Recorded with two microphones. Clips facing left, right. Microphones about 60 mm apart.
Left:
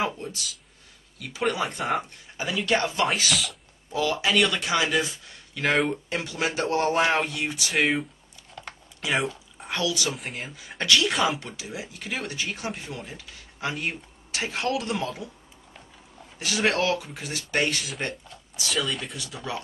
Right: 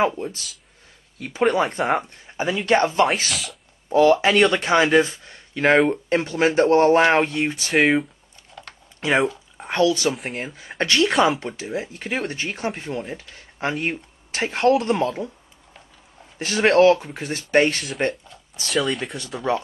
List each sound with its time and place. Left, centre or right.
1.1 s speech: right
3.3 s speech: centre
3.9 s speech: right
7.7 s speech: centre
8.5 s typing: centre
9.0 s speech: right
10.1 s speech: centre
10.8 s speech: right
16.3 s speech: right
18.7 s speech: centre
19.5 s speech: right